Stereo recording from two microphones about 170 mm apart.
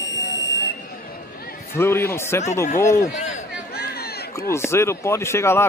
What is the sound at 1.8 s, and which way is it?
Speech, 15° left (ahead or behind).